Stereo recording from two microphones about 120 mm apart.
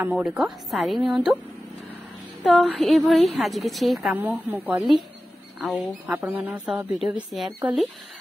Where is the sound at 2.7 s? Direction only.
Centre (ahead or behind).